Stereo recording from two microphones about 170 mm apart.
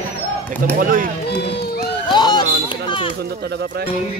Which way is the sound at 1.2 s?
70° left (ahead or behind).